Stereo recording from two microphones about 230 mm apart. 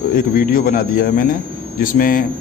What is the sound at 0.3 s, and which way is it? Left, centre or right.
A man's voice, left.